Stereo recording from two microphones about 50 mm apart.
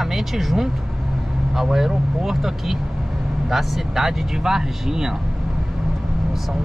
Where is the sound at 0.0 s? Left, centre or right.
Centre.